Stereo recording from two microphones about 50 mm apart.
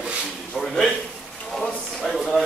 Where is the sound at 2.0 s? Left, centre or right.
Centre.